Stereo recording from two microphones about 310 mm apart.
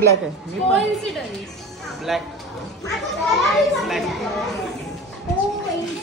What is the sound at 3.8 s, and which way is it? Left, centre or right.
Speech, centre.